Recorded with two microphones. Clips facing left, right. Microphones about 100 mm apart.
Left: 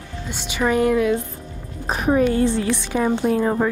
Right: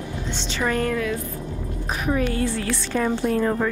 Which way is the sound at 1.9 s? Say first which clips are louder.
Left 6 dB; 35° left (ahead or behind).